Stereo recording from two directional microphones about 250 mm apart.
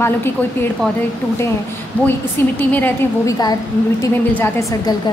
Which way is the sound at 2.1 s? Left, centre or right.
Centre.